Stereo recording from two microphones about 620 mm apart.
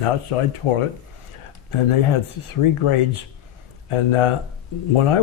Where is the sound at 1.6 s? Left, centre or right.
Left.